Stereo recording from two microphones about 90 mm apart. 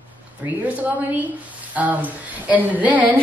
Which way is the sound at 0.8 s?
20° right (ahead or behind).